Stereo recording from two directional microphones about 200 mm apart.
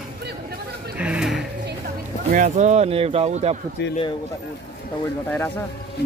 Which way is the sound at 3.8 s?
60° left (ahead or behind).